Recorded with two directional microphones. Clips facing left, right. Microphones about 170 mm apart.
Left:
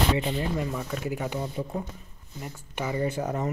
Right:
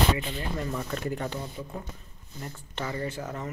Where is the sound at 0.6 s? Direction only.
5° left (ahead or behind).